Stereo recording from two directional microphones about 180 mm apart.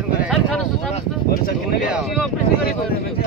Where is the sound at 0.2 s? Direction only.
Centre (ahead or behind).